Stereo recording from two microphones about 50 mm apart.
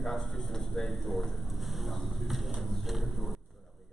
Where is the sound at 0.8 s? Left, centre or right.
Centre.